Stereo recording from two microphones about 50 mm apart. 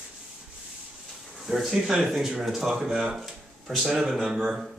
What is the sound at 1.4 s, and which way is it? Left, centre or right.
Speech, centre.